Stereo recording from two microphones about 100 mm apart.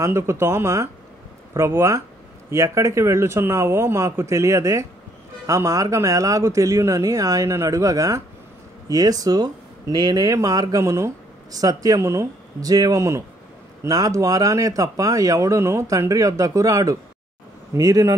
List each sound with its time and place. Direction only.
0.0 s a man's voice: 25° right (ahead or behind)